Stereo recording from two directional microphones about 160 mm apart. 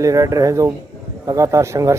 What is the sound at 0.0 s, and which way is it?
Speech, 20° right (ahead or behind).